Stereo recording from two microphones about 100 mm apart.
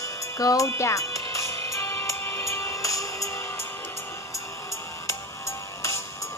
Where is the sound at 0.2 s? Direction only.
35° left (ahead or behind).